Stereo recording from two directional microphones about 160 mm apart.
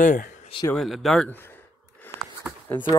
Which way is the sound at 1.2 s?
15° left (ahead or behind).